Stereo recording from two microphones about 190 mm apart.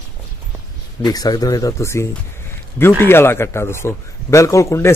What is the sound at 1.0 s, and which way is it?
A man's voice, 20° left (ahead or behind).